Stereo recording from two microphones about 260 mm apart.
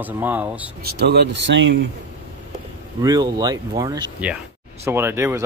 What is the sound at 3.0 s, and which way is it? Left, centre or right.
Speech, centre.